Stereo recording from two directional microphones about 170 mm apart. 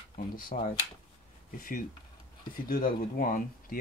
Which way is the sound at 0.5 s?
45° left (ahead or behind).